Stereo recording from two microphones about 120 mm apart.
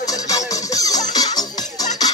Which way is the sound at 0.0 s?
30° left (ahead or behind).